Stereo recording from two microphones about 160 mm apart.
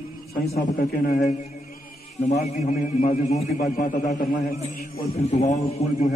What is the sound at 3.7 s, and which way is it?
A man's voice, 55° left (ahead or behind).